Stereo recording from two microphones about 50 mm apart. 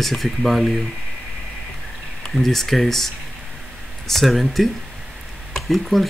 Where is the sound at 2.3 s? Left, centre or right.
Centre.